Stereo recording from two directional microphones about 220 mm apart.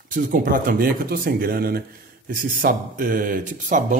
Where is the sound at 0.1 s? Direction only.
40° right (ahead or behind).